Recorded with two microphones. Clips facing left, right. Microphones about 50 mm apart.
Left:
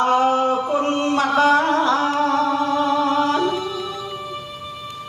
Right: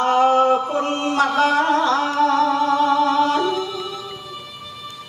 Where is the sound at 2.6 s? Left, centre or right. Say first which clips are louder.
Right 2 dB; right.